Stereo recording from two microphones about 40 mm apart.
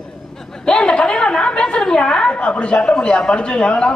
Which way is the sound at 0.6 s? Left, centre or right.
Left.